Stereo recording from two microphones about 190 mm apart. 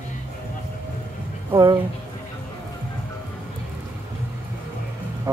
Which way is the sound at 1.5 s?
20° right (ahead or behind).